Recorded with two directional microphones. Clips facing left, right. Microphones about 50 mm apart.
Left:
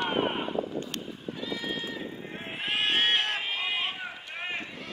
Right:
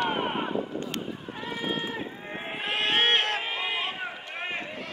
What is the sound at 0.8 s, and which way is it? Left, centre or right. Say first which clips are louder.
Run: right 3 dB; right.